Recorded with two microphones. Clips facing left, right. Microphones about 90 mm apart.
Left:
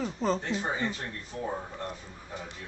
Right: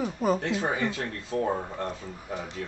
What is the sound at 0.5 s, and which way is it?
Speech, 65° right (ahead or behind).